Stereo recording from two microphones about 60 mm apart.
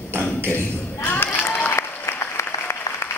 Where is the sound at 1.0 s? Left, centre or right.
Left.